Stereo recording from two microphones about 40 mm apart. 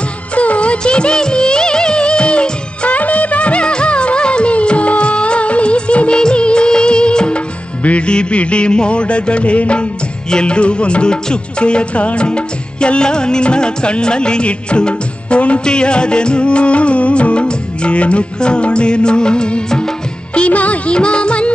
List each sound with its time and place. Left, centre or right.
0.4 s music of bollywood: left
7.8 s music: left
20.3 s music: left